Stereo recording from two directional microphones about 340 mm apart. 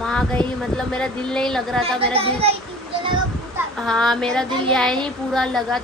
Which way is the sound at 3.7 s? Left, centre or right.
Centre.